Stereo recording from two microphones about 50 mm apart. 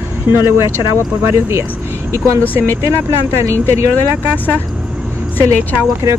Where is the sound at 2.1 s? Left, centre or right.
Right.